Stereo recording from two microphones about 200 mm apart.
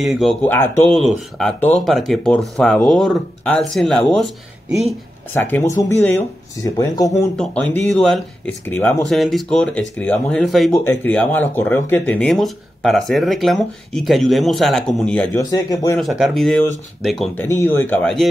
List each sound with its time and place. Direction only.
0.0 s speech: centre (ahead or behind)
5.3 s speech: 10° left (ahead or behind)
9.0 s speech: centre (ahead or behind)
15.3 s speech: 15° left (ahead or behind)
16.0 s speech: centre (ahead or behind)
17.5 s speech: 10° left (ahead or behind)